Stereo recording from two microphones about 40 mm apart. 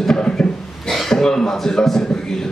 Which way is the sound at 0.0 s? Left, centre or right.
Centre.